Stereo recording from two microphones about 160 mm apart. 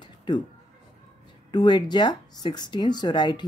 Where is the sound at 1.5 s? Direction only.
30° left (ahead or behind).